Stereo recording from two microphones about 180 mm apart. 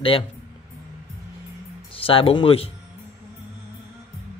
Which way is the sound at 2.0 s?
30° left (ahead or behind).